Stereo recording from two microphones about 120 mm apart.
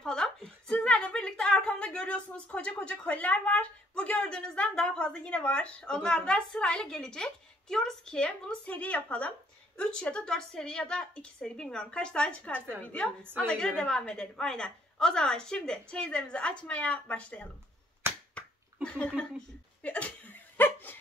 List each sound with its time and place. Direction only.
0.0 s a woman's voice: 5° left (ahead or behind)
13.2 s a woman's voice: 15° right (ahead or behind)
13.5 s a woman's voice: 5° left (ahead or behind)
18.3 s a sound: 10° left (ahead or behind)
20.5 s dog: 15° left (ahead or behind)